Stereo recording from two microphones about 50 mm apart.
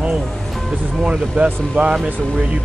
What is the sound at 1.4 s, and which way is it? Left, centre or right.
Speech, right.